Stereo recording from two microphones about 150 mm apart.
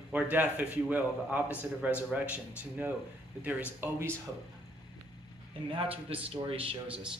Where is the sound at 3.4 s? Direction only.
10° right (ahead or behind).